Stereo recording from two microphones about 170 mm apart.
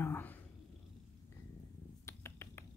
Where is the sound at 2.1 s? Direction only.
15° left (ahead or behind).